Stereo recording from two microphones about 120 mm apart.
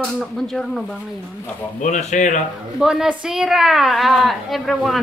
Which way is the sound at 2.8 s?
5° right (ahead or behind).